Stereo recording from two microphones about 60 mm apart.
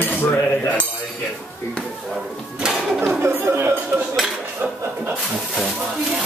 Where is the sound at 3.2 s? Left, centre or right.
Right.